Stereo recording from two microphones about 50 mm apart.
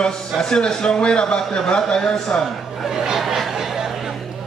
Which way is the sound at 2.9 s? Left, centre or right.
Centre.